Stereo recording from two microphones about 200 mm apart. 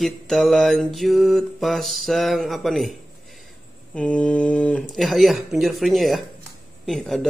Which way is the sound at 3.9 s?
5° left (ahead or behind).